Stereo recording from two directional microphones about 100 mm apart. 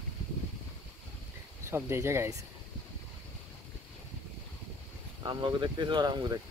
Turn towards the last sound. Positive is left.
turn(degrees=-45)  # may be behind; listen again after turning